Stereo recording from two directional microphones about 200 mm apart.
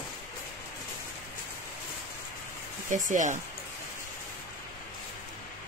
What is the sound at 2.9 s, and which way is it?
Speech, 40° right (ahead or behind).